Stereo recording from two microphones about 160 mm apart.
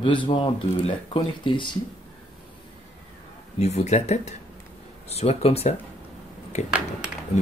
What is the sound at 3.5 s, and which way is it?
Speech, 45° left (ahead or behind).